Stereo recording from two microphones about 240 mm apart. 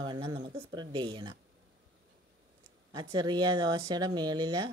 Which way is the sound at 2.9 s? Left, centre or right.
Centre.